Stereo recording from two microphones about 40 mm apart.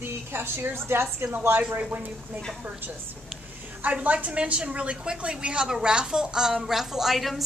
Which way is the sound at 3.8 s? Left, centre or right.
Right.